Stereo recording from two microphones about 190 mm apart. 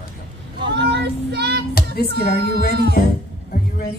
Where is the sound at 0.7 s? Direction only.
65° right (ahead or behind).